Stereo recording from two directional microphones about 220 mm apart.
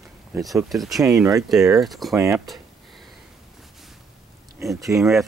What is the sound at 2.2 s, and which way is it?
Speech, 15° right (ahead or behind).